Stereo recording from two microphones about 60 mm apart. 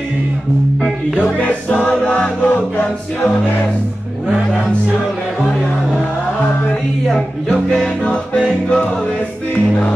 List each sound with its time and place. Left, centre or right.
1.2 s music: left
7.7 s music: centre